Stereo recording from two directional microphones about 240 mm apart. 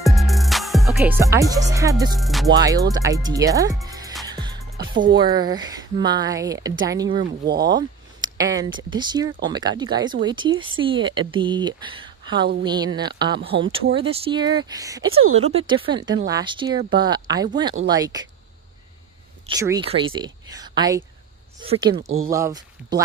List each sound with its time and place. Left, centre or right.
0.0 s music: centre
1.7 s speech: centre
2.1 s music: centre
2.5 s speech: centre
19.4 s speech: centre
20.4 s a sound: centre
21.6 s speech: right